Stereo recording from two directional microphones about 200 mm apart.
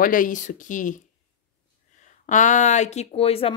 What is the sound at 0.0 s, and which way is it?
Speech, 45° left (ahead or behind).